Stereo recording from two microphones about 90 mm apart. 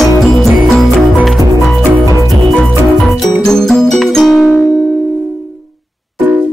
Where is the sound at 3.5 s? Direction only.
5° left (ahead or behind).